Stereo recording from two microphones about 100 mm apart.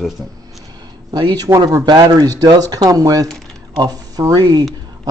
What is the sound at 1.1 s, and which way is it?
Speech, 40° right (ahead or behind).